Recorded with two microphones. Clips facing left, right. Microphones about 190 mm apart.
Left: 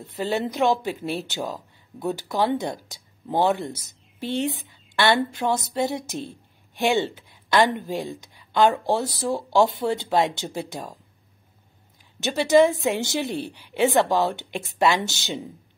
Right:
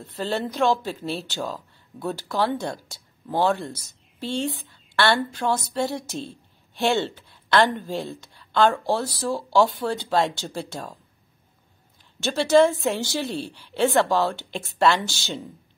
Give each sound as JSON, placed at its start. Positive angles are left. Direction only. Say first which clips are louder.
{"t": 0.0, "sound": "speech", "louder": "left 2 dB", "side_deg": 15}
{"t": 12.2, "sound": "speech", "louder": "even", "side_deg": 15}